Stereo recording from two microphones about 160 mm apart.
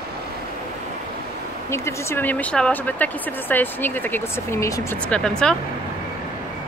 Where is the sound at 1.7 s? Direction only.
15° left (ahead or behind).